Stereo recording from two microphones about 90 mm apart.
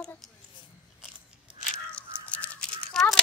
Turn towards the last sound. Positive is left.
turn(degrees=5)  # may be behind; listen again after turning